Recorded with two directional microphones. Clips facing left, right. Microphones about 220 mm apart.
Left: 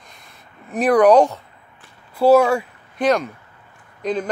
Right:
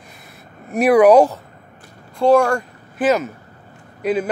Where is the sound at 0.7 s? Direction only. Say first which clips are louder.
Right 2 dB; 10° right (ahead or behind).